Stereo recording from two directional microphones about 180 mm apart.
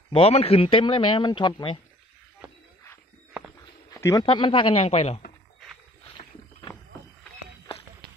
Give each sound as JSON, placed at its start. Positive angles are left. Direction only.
{"t": 0.1, "sound": "speech", "side_deg": 35}
{"t": 3.9, "sound": "speech", "side_deg": 20}